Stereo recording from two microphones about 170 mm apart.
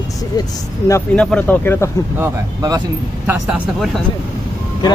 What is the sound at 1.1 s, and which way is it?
Speech, 5° left (ahead or behind).